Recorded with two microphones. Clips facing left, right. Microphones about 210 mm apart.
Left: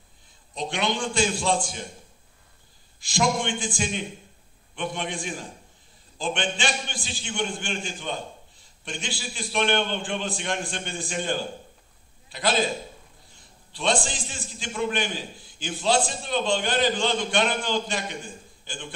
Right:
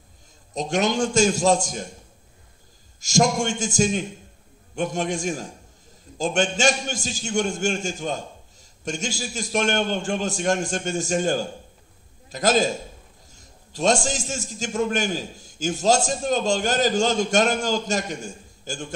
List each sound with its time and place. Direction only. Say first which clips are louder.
0.5 s a man's voice: right 5 dB; 45° right (ahead or behind)
3.0 s a man's voice: right 4 dB; 45° right (ahead or behind)